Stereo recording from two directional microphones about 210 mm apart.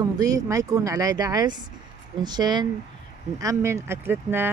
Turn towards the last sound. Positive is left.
turn(degrees=-10)  # may be behind; listen again after turning